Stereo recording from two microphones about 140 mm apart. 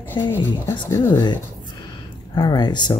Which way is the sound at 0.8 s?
20° left (ahead or behind).